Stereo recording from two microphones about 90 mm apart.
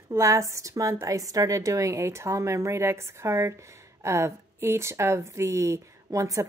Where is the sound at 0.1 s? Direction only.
35° right (ahead or behind).